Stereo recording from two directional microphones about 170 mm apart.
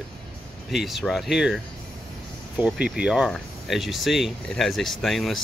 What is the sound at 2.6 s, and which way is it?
Speech, 5° right (ahead or behind).